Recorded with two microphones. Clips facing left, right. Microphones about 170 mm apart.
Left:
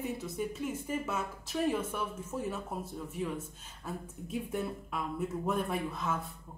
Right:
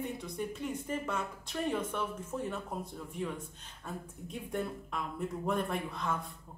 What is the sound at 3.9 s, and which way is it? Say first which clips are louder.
Speech: left 3 dB; 5° left (ahead or behind).